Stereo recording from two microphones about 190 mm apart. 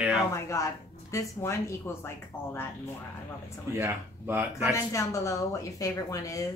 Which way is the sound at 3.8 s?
10° right (ahead or behind).